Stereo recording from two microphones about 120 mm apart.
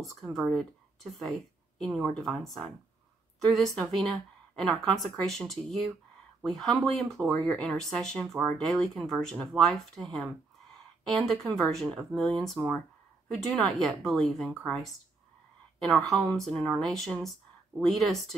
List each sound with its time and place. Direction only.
0.0 s speech: centre (ahead or behind)
12.6 s speech: 20° right (ahead or behind)
13.3 s speech: centre (ahead or behind)